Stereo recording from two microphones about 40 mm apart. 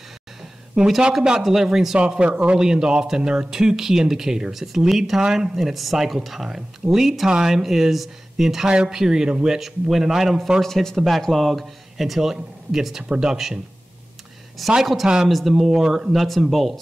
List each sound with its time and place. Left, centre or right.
0.8 s speech: centre
1.4 s a man's voice: centre
2.0 s a man's voice: right
5.6 s a man's voice: centre
8.6 s a man's voice: centre
9.6 s a man's voice: centre
10.6 s a man's voice: centre
14.8 s speech: centre